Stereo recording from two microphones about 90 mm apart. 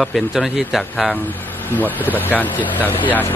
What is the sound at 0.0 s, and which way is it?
A man's voice, centre (ahead or behind).